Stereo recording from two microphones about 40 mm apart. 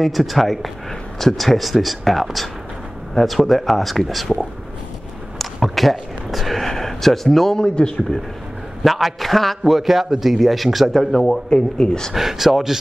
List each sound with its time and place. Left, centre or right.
0.0 s speech: centre
5.4 s a sound: centre
7.5 s speech: left
8.8 s speech: centre
10.9 s speech: centre
12.1 s speech: centre